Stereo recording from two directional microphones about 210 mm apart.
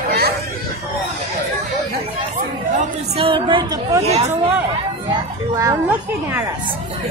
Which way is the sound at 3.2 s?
25° right (ahead or behind).